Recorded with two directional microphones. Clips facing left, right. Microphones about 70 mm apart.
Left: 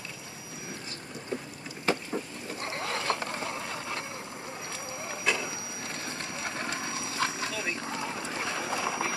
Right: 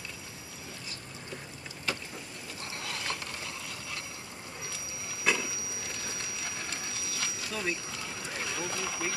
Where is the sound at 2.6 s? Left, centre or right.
Left.